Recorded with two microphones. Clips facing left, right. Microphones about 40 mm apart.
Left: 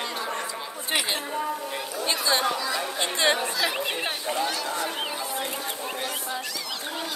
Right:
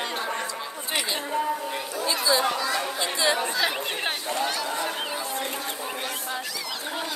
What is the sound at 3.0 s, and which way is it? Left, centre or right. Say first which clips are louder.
Chatter: left 2 dB; left.